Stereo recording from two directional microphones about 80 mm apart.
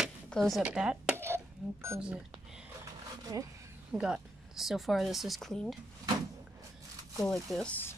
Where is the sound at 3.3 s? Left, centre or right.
Right.